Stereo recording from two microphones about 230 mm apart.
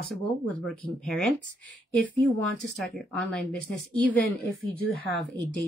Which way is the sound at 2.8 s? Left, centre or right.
Centre.